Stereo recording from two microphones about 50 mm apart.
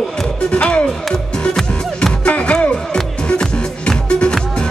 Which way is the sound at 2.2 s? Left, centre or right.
Left.